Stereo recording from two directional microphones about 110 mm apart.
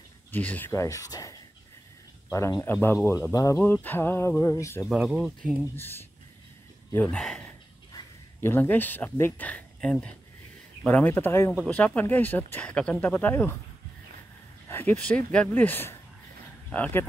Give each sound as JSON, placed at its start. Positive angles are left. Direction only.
{"t": 0.3, "sound": "speech", "side_deg": 15}
{"t": 0.7, "sound": "music", "side_deg": 30}
{"t": 2.2, "sound": "speech", "side_deg": 30}
{"t": 2.6, "sound": "music", "side_deg": 20}
{"t": 4.8, "sound": "speech", "side_deg": -5}
{"t": 5.8, "sound": "music", "side_deg": 20}
{"t": 6.9, "sound": "speech", "side_deg": 15}
{"t": 7.2, "sound": "speech", "side_deg": 5}
{"t": 8.4, "sound": "speech", "side_deg": 20}
{"t": 14.7, "sound": "a sound", "side_deg": 20}
{"t": 15.0, "sound": "speech", "side_deg": 10}